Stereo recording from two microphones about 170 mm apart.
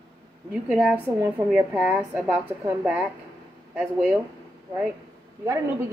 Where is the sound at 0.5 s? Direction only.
5° right (ahead or behind).